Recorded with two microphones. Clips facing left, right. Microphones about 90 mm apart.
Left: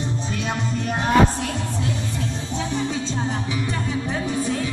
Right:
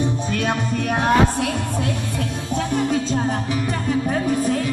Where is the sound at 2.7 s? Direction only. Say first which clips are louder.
Right 6 dB; 55° right (ahead or behind).